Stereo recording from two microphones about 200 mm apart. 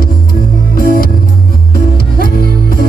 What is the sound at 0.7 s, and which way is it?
Music, 45° left (ahead or behind).